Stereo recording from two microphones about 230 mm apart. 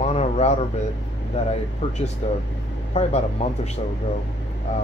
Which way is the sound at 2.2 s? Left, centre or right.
Left.